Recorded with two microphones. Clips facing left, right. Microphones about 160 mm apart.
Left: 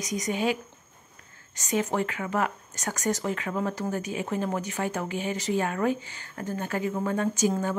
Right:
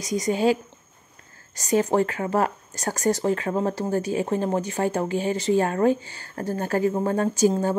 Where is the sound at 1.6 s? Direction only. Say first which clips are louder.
Right 6 dB; 35° right (ahead or behind).